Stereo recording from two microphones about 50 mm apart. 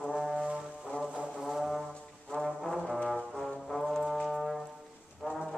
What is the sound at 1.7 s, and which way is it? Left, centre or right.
Brass instrument, centre.